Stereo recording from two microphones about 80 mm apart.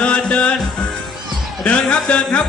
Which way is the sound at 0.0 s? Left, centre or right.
Centre.